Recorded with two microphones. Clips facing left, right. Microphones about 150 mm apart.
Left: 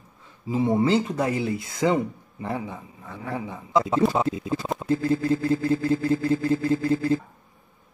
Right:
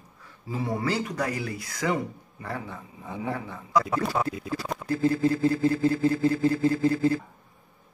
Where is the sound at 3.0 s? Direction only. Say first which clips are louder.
Right 3 dB; 20° right (ahead or behind).